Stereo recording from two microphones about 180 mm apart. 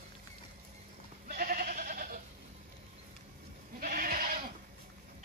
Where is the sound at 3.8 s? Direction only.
50° right (ahead or behind).